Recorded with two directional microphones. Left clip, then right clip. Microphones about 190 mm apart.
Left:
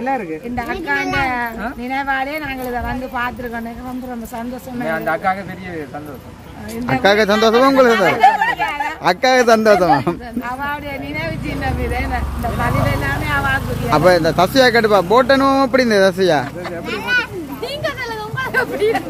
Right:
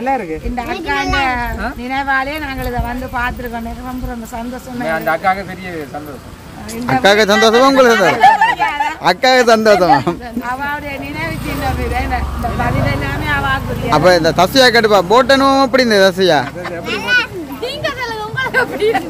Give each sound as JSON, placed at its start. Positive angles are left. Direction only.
{"t": 0.6, "sound": "speech", "side_deg": 15}
{"t": 4.8, "sound": "speech", "side_deg": -15}
{"t": 6.9, "sound": "a man's voice", "side_deg": 0}
{"t": 10.6, "sound": "speech", "side_deg": 20}
{"t": 12.8, "sound": "speech", "side_deg": 20}
{"t": 13.8, "sound": "a man's voice", "side_deg": 0}
{"t": 16.9, "sound": "a sound", "side_deg": -10}
{"t": 17.8, "sound": "a sound", "side_deg": 10}